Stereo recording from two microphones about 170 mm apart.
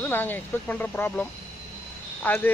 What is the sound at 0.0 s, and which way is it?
Speech, 10° left (ahead or behind).